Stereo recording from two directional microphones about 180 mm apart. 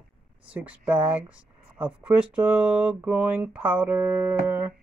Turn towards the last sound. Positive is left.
turn(degrees=-10)  # may be behind; listen again after turning